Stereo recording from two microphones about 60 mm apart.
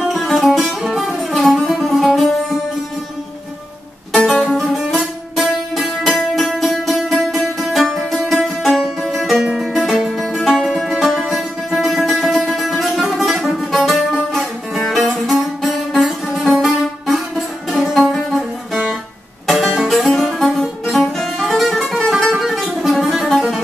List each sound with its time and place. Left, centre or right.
0.0 s music: centre
4.5 s music: centre
4.8 s music: centre